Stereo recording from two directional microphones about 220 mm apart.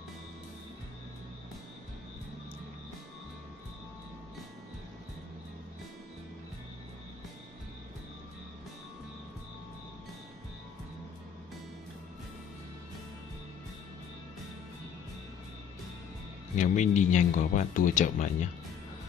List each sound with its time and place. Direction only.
16.5 s speech: 35° left (ahead or behind)